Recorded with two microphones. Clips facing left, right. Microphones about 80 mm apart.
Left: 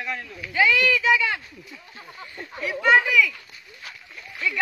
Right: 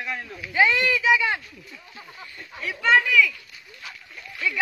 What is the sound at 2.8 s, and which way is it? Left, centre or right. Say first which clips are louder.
Speech: even; centre.